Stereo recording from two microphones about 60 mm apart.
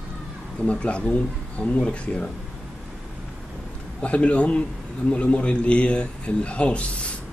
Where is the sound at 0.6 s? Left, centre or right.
Centre.